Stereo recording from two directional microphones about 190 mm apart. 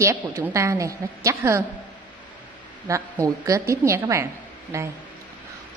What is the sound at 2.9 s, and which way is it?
A woman's voice, 15° right (ahead or behind).